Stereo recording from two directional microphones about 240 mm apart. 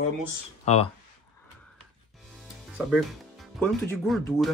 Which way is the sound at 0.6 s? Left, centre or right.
Left.